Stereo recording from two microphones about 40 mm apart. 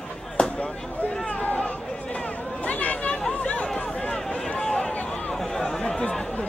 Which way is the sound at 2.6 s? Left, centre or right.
Left.